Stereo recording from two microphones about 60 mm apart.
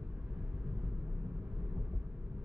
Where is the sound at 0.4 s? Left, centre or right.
Centre.